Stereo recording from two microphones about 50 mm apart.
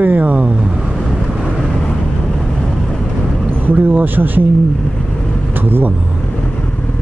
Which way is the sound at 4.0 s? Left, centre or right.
Right.